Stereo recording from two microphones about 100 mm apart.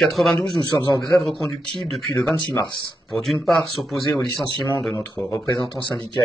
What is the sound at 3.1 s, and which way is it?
Speech, 5° left (ahead or behind).